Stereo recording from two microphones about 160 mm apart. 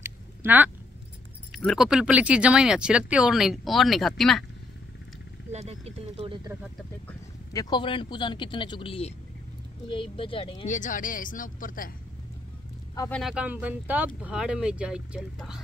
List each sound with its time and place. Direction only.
0.0 s a sound: 10° right (ahead or behind)
1.5 s speech: centre (ahead or behind)
5.5 s speech: 45° right (ahead or behind)
7.5 s speech: 30° left (ahead or behind)
10.7 s speech: 55° left (ahead or behind)
13.1 s speech: 5° right (ahead or behind)